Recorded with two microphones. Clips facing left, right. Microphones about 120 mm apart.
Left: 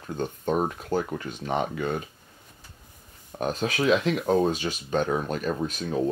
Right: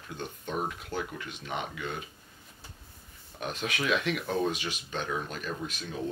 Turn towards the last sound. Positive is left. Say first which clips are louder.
# left 9 dB
turn(degrees=40)  # may be behind; listen again after turning